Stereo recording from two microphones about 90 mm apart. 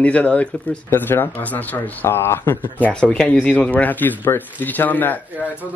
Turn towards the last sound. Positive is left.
turn(degrees=20)  # may be behind; listen again after turning